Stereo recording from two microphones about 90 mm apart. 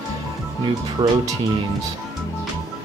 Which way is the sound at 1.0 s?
60° right (ahead or behind).